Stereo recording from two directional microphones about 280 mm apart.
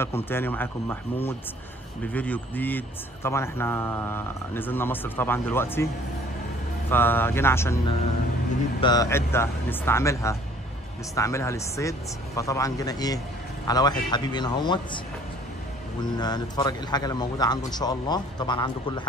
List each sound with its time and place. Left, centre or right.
0.3 s speech: centre
6.9 s speech: centre
8.8 s speech: centre
16.0 s speech: centre